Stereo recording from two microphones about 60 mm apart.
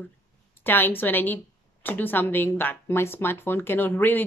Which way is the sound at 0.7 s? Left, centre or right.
Left.